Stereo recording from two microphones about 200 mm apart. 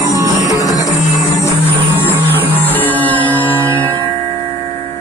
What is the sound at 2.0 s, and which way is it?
Music, 10° left (ahead or behind).